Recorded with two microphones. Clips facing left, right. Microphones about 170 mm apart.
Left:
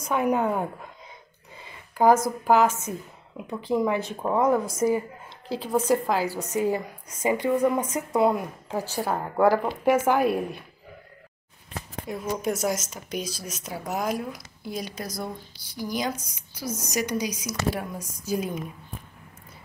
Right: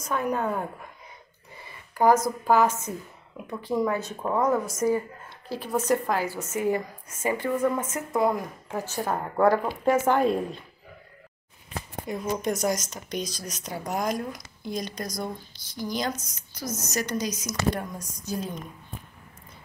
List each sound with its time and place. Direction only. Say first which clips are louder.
0.1 s speech: left 3 dB; 15° left (ahead or behind)
12.1 s speech: even; 5° left (ahead or behind)